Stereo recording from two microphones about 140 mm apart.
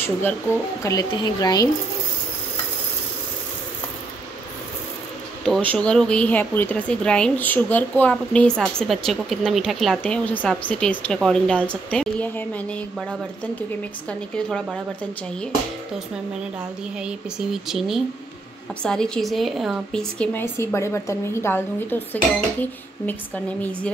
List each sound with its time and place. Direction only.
0.0 s speech: 15° left (ahead or behind)
0.8 s speech: 30° left (ahead or behind)
5.4 s speech: 5° left (ahead or behind)
10.0 s speech: 10° left (ahead or behind)
14.3 s a woman's voice: 5° left (ahead or behind)
17.0 s a woman's voice: centre (ahead or behind)
20.5 s speech: 20° left (ahead or behind)